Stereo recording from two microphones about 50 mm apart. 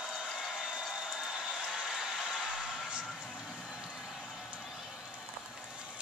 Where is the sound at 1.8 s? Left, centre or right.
Centre.